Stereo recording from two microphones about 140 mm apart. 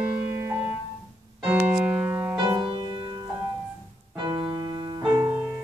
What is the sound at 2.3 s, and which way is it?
Music, 30° right (ahead or behind).